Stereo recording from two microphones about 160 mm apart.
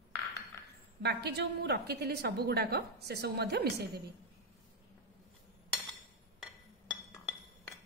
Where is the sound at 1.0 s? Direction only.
90° right.